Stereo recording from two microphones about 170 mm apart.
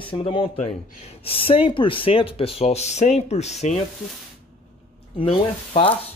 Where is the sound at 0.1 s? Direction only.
30° left (ahead or behind).